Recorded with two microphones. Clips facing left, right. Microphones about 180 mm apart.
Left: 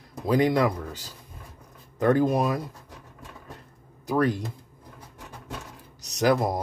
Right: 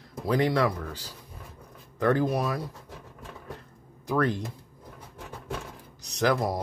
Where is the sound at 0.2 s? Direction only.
15° left (ahead or behind).